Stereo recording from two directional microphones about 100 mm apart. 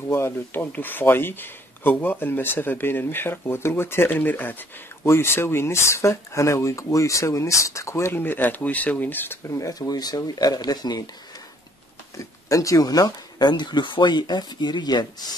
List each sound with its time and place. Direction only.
0.1 s speech: 25° left (ahead or behind)
9.6 s speech: 35° left (ahead or behind)
12.2 s speech: 35° left (ahead or behind)